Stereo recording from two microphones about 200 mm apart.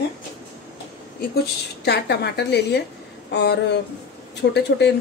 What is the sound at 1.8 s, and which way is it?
Speech, 55° left (ahead or behind).